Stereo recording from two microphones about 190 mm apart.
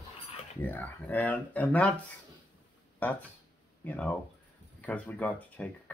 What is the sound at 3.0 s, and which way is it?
Speech, 10° left (ahead or behind).